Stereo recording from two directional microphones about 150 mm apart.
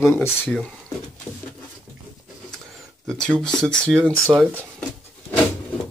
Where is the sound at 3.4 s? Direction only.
5° left (ahead or behind).